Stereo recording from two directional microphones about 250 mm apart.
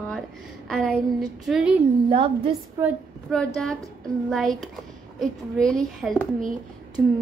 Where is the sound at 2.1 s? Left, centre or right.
Right.